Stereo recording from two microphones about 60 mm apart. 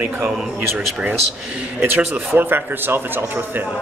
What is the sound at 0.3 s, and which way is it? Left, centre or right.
Speech, centre.